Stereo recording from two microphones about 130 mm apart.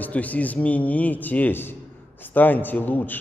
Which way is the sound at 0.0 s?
10° left (ahead or behind).